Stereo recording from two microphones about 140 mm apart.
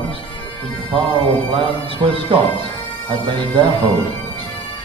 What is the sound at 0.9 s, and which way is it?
Speech, 40° right (ahead or behind).